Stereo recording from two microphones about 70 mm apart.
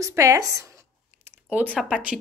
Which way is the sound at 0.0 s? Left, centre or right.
Right.